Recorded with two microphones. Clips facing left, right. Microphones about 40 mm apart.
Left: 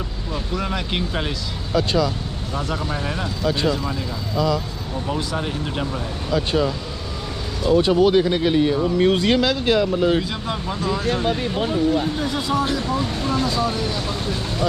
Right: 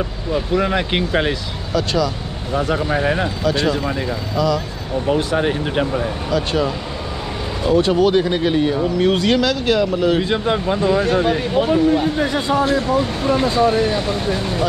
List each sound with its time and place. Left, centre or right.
0.3 s speech: right
2.5 s speech: right
5.0 s speech: right
8.0 s speech: centre
10.2 s speech: right
11.7 s speech: right
12.6 s speech: right